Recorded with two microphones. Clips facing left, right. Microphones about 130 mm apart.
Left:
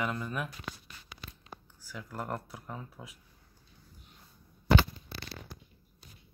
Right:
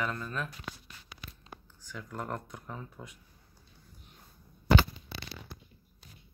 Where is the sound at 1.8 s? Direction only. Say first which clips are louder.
Even; 5° left (ahead or behind).